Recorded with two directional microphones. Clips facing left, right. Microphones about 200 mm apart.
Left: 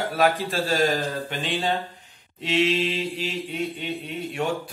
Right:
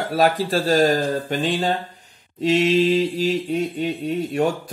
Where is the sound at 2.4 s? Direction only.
40° right (ahead or behind).